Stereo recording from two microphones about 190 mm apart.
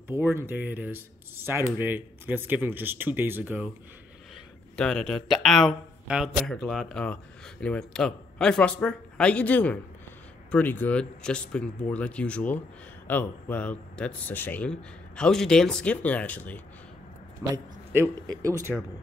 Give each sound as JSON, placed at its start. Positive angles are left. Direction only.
{"t": 0.1, "sound": "speech", "side_deg": -15}
{"t": 4.7, "sound": "speech", "side_deg": 5}
{"t": 17.4, "sound": "speech", "side_deg": -15}